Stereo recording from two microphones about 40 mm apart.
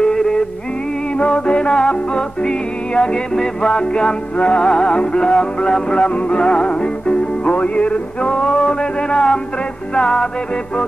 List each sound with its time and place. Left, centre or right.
0.0 s music: centre
1.1 s music: left
6.0 s music: left